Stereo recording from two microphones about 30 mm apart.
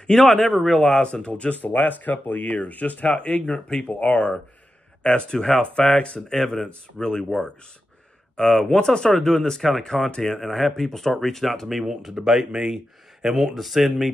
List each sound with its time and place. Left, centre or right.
0.0 s speech: left
1.2 s speech: left
1.5 s speech: left
3.2 s speech: left
3.8 s speech: left
6.4 s speech: centre
8.4 s speech: centre
9.2 s speech: centre
11.8 s speech: centre
13.3 s speech: centre